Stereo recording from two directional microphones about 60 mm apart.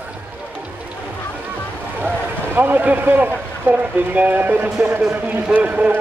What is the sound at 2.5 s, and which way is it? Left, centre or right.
Speech, right.